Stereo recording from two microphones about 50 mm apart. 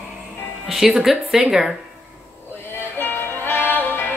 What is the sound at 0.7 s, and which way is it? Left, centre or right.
A woman's voice, centre.